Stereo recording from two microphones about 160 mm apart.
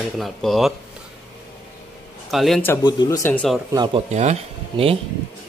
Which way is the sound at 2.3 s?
Centre (ahead or behind).